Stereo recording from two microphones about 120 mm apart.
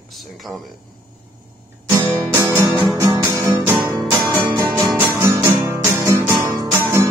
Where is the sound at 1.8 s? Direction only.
20° right (ahead or behind).